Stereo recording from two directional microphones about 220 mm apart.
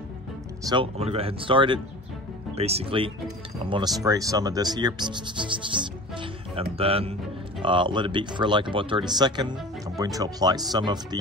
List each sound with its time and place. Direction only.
0.7 s speech: 25° right (ahead or behind)